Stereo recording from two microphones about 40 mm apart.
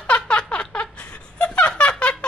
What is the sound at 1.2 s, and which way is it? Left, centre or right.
Snicker, left.